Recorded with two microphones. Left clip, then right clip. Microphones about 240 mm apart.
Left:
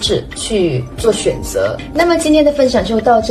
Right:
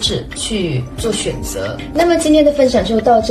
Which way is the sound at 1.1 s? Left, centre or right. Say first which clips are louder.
Left 5 dB; right.